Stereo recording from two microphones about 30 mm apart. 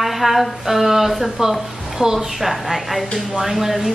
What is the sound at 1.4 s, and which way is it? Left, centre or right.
Speech, right.